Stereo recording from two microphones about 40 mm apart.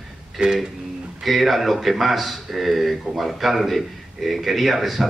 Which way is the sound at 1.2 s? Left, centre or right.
Centre.